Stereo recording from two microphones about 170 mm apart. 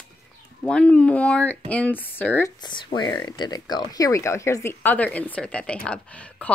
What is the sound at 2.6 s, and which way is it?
A woman's voice, 25° left (ahead or behind).